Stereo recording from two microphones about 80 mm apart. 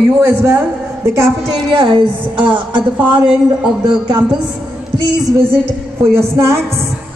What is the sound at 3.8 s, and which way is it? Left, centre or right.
Speech, right.